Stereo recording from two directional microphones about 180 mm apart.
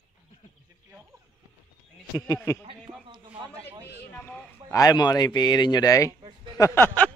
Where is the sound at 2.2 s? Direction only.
15° left (ahead or behind).